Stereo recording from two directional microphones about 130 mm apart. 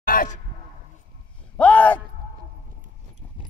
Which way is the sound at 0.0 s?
90° left.